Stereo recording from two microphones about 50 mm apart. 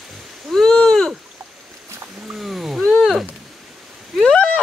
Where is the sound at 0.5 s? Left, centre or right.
Centre.